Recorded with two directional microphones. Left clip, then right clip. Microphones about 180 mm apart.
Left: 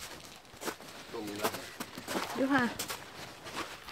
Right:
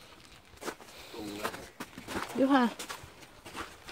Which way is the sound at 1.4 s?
50° left (ahead or behind).